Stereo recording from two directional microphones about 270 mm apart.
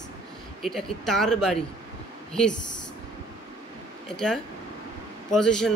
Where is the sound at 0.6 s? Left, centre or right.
Centre.